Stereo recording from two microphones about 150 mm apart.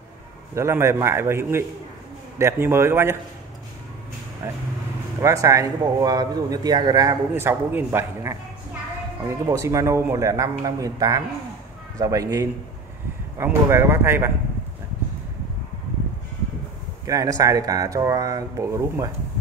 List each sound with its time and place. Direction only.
0.6 s a man's voice: 20° right (ahead or behind)
5.2 s a man's voice: 20° right (ahead or behind)
17.0 s a man's voice: 25° right (ahead or behind)